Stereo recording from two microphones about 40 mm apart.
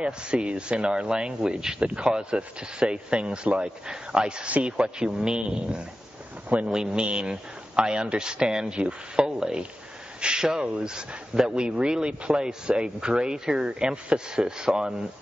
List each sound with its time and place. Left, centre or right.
0.0 s speech: right
3.8 s speech: centre
4.5 s speech: right
4.7 s speech: right
6.7 s speech: centre